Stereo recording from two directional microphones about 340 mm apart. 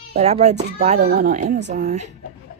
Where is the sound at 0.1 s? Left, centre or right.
Centre.